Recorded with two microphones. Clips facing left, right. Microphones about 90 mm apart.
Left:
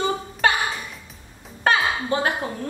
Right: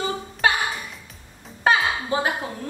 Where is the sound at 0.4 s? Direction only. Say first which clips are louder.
Left 1 dB; 5° right (ahead or behind).